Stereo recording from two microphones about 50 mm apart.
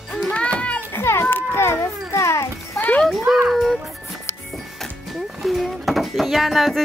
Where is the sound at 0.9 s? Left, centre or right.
Left.